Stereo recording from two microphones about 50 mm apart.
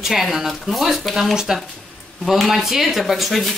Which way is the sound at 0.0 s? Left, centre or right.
Centre.